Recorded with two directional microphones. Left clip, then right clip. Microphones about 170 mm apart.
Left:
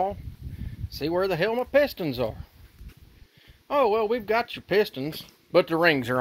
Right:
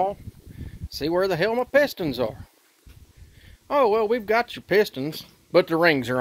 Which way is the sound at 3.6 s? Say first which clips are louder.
Right 2 dB; 25° right (ahead or behind).